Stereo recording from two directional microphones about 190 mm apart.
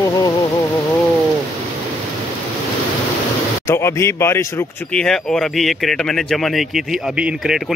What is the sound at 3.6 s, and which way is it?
Speech, 15° left (ahead or behind).